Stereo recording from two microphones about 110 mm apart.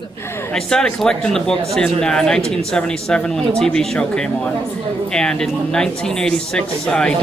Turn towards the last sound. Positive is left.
turn(degrees=10)  # may be behind; listen again after turning